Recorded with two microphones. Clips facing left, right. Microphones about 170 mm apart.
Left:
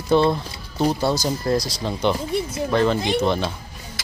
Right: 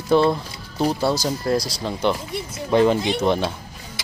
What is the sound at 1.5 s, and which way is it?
Speech, centre (ahead or behind).